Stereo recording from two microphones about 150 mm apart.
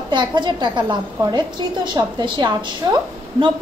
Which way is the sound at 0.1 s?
30° right (ahead or behind).